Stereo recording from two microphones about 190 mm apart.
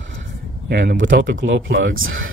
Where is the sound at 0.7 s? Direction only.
65° right (ahead or behind).